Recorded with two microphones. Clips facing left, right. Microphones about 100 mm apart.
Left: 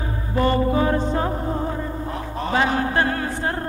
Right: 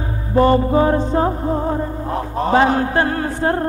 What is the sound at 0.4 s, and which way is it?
Music, 35° right (ahead or behind).